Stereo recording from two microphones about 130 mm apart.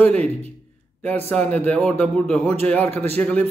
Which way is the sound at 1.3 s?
10° left (ahead or behind).